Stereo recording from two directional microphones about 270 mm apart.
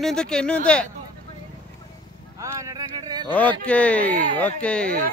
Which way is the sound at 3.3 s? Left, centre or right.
Centre.